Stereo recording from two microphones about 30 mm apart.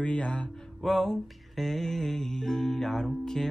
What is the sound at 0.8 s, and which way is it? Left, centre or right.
Music, centre.